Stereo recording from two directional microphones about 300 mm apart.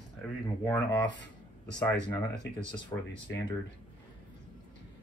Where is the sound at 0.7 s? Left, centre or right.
Centre.